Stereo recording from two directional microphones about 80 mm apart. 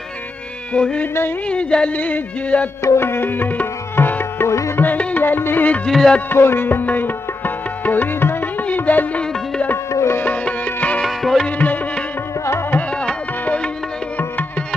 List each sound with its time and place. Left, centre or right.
0.7 s music: centre
2.8 s music: left
4.8 s music: left
5.9 s music: centre
6.3 s music: left
9.9 s music: left
10.2 s music: centre
11.1 s music: centre
11.4 s music: centre